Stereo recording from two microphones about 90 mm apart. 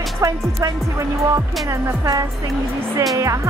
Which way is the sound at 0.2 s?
40° right (ahead or behind).